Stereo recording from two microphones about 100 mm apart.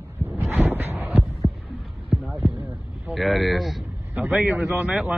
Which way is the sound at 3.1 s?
Centre (ahead or behind).